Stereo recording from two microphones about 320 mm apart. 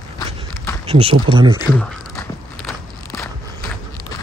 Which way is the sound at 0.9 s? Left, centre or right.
Centre.